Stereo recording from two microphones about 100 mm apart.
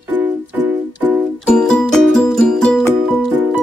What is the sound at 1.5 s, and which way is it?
Music, 5° left (ahead or behind).